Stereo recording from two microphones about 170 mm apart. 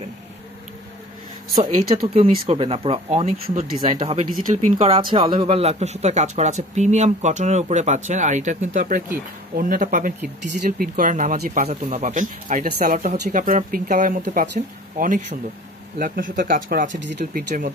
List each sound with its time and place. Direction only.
1.9 s speech: 35° right (ahead or behind); by 16.9 s 55° right (ahead or behind)
17.0 s speech: 75° right (ahead or behind); by 17.7 s 55° right (ahead or behind)